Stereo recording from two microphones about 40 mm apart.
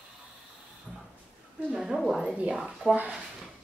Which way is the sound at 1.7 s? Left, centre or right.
Centre.